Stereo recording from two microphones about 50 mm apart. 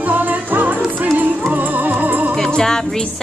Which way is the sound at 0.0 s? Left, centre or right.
Right.